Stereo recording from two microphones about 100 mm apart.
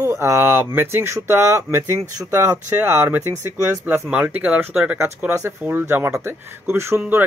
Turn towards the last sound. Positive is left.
turn(degrees=-25)  # may be behind; listen again after turning